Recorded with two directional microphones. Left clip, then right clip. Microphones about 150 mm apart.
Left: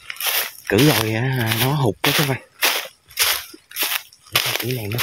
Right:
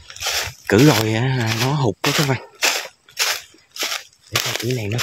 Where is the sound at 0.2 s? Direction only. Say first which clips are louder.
Right 1 dB; 5° left (ahead or behind).